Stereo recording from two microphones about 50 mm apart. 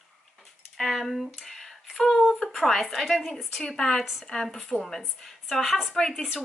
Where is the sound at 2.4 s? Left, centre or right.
Centre.